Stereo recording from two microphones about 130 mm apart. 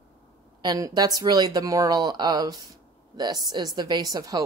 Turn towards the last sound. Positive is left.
turn(degrees=-30)  # may be behind; listen again after turning